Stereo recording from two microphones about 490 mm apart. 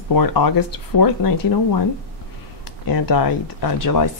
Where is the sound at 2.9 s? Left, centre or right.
Left.